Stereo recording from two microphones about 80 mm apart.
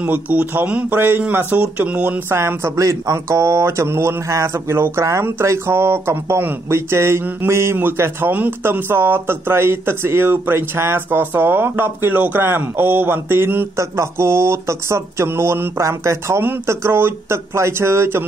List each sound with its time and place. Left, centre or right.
0.0 s speech: centre
2.2 s speech: right